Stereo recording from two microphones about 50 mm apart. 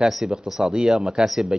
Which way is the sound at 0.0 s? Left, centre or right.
Centre.